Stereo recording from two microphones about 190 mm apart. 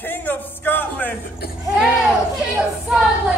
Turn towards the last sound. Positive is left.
turn(degrees=-5)  # may be behind; listen again after turning